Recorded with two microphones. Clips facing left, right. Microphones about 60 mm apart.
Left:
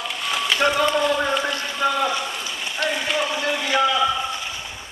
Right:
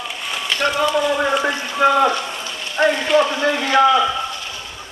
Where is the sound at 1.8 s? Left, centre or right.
Right.